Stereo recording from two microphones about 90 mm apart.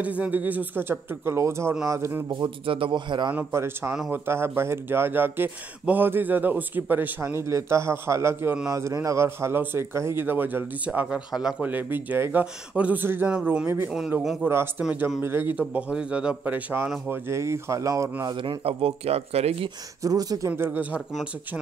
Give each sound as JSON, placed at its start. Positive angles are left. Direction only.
{"t": 0.0, "sound": "a man's voice", "side_deg": -15}
{"t": 2.3, "sound": "a man's voice", "side_deg": -70}
{"t": 3.5, "sound": "a man's voice", "side_deg": -25}
{"t": 7.4, "sound": "a man's voice", "side_deg": -30}
{"t": 13.3, "sound": "a man's voice", "side_deg": -10}
{"t": 14.4, "sound": "a man's voice", "side_deg": -20}
{"t": 15.7, "sound": "a man's voice", "side_deg": -10}
{"t": 17.1, "sound": "a man's voice", "side_deg": -30}
{"t": 18.3, "sound": "speech", "side_deg": -65}
{"t": 20.0, "sound": "a man's voice", "side_deg": -40}